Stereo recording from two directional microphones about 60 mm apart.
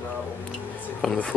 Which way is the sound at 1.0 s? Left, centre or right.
Centre.